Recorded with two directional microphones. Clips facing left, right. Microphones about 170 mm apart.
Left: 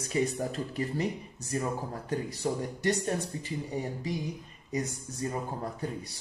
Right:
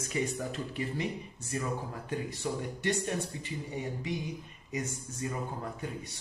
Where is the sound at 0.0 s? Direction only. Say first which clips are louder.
Left 4 dB; 35° left (ahead or behind).